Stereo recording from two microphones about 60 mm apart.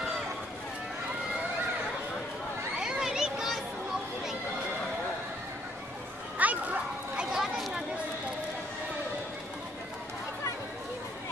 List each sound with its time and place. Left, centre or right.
2.8 s children playing: centre
6.3 s dog: right
7.3 s chatter: centre